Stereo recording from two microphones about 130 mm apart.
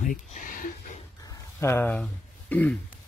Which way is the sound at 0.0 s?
90° left.